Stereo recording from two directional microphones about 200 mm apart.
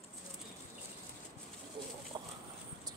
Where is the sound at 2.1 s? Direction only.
20° right (ahead or behind).